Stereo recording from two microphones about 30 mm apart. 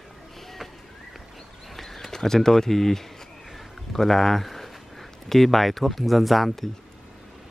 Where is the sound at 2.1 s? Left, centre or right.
Centre.